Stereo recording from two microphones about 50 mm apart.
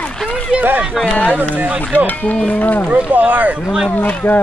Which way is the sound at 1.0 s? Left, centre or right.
Centre.